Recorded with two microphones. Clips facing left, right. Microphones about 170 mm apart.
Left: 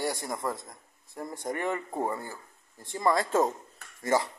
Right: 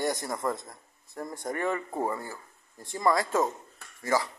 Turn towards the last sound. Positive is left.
turn(degrees=20)  # may be behind; listen again after turning